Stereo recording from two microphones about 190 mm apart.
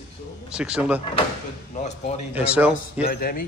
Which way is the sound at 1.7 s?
35° left (ahead or behind).